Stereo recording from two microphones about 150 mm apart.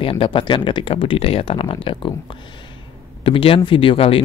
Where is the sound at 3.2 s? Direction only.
35° left (ahead or behind).